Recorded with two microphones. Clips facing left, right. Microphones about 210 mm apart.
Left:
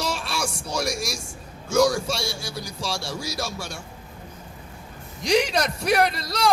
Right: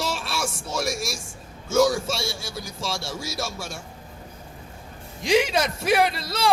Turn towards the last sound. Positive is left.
turn(degrees=0)  # may be behind; listen again after turning